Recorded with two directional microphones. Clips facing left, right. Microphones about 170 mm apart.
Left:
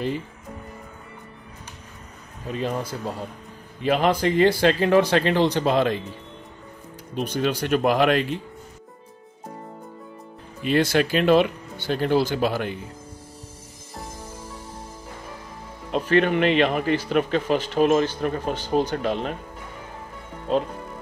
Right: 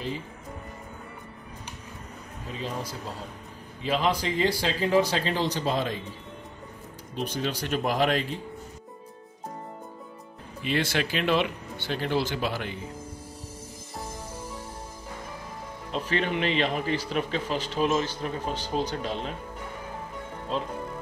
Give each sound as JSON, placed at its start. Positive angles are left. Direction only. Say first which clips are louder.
{"t": 2.5, "sound": "speech", "louder": "left 7 dB", "side_deg": 55}
{"t": 7.2, "sound": "speech", "louder": "left 6 dB", "side_deg": 60}
{"t": 10.6, "sound": "speech", "louder": "left 7 dB", "side_deg": 45}
{"t": 15.9, "sound": "speech", "louder": "left 8 dB", "side_deg": 55}